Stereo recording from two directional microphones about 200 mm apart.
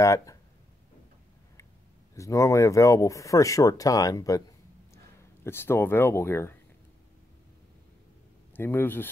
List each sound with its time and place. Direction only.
0.0 s speech: 15° left (ahead or behind)
2.1 s speech: 15° left (ahead or behind)
8.5 s speech: 10° left (ahead or behind)